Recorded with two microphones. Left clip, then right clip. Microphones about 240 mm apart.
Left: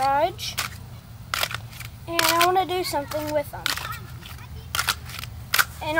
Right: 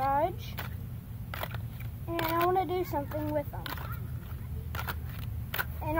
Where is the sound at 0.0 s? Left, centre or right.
Centre.